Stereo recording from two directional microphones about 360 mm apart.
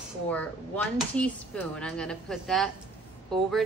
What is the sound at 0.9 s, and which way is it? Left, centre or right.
Speech, centre.